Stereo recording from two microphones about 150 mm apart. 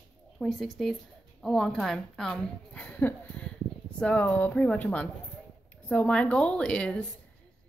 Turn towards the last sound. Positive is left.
turn(degrees=5)  # may be behind; listen again after turning